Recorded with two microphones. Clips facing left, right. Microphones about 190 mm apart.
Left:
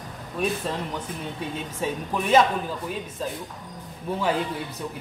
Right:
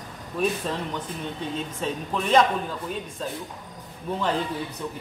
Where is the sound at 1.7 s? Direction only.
5° left (ahead or behind).